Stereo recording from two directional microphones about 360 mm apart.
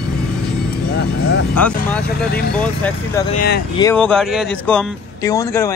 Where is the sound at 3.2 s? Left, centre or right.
Centre.